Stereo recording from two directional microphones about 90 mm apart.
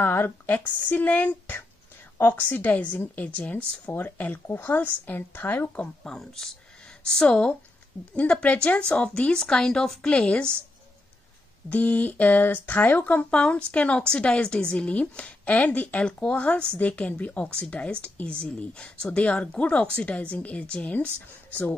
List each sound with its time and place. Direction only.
0.0 s speech: 25° left (ahead or behind)
6.0 s speech: 5° left (ahead or behind)
11.7 s speech: 15° left (ahead or behind)